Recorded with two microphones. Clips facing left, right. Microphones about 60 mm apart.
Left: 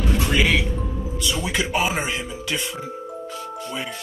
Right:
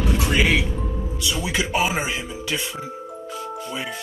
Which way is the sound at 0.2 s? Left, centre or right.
Centre.